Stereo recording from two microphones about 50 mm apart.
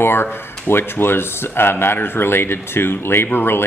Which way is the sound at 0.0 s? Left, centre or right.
Left.